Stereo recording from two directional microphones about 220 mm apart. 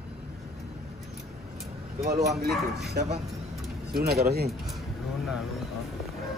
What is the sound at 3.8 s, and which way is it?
Speech, 45° right (ahead or behind).